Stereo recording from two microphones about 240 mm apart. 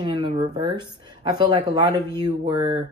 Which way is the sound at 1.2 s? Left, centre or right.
Centre.